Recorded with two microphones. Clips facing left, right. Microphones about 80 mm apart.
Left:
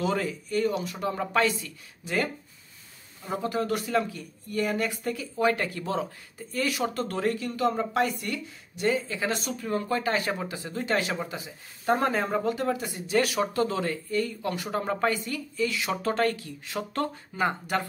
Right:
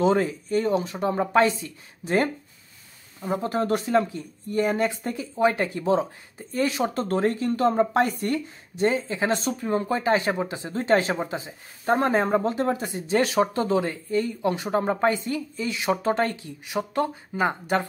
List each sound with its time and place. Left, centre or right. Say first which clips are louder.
0.0 s speech: right 7 dB; right